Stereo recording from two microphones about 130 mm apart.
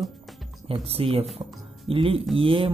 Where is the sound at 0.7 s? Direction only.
45° right (ahead or behind).